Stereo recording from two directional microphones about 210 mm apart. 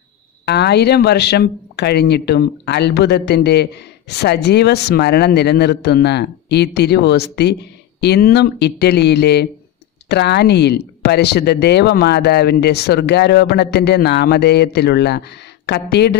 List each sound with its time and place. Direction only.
0.5 s speech: 50° left (ahead or behind)